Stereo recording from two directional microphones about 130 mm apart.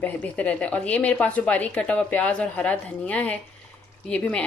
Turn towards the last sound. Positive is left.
turn(degrees=10)  # may be behind; listen again after turning